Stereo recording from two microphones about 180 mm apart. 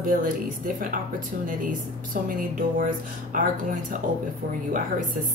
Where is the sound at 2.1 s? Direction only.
50° right (ahead or behind).